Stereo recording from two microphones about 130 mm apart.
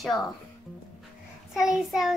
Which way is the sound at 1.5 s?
5° right (ahead or behind).